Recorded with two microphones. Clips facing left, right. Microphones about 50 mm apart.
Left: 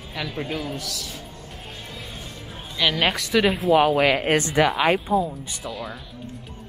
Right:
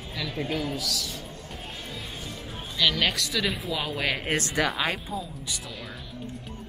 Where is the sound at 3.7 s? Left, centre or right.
Left.